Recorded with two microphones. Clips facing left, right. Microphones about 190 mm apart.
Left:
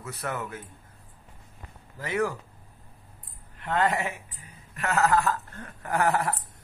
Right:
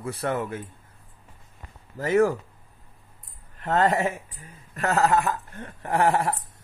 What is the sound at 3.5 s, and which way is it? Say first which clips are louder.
A man's voice: right 4 dB; 40° right (ahead or behind).